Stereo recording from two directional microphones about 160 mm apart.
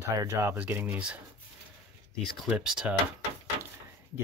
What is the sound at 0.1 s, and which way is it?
Speech, 20° right (ahead or behind).